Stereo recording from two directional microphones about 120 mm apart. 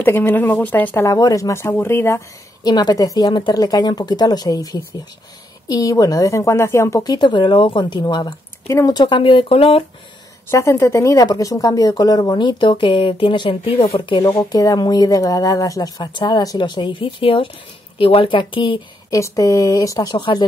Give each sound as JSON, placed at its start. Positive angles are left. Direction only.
{"t": 0.0, "sound": "speech", "side_deg": 15}
{"t": 1.0, "sound": "speech", "side_deg": 30}
{"t": 2.6, "sound": "a woman's voice", "side_deg": 35}
{"t": 8.9, "sound": "speech", "side_deg": 40}
{"t": 10.5, "sound": "speech", "side_deg": 25}
{"t": 14.2, "sound": "speech", "side_deg": 30}
{"t": 19.1, "sound": "speech", "side_deg": 30}